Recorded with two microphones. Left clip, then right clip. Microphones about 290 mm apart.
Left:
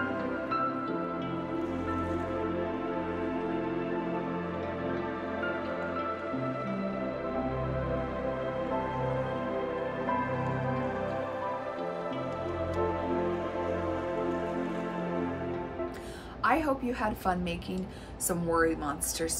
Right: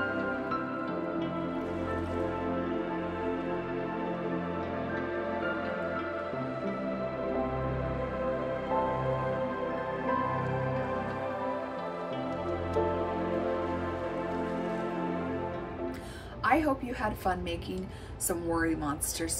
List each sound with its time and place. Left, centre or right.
16.4 s a woman's voice: centre